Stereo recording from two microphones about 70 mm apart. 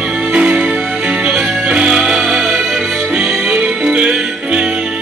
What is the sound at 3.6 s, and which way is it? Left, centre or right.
Music, centre.